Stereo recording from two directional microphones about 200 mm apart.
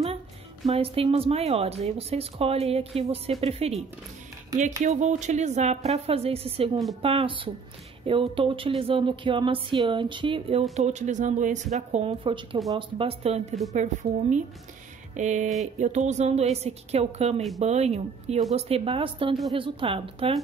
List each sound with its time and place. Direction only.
0.7 s speech: 30° right (ahead or behind)
10.8 s speech: 35° right (ahead or behind)
15.1 s speech: 35° right (ahead or behind)